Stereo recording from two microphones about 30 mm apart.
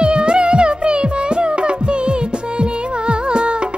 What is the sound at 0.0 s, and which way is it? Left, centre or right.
Music, right.